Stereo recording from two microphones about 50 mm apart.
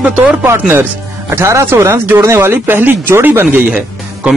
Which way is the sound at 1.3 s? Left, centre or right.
Right.